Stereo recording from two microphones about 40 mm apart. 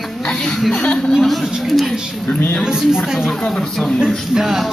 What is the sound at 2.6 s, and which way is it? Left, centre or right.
Speech, centre.